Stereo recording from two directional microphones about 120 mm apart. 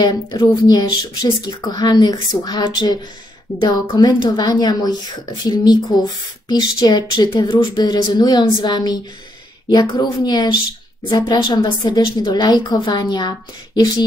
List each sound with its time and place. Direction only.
0.0 s speech: 35° left (ahead or behind)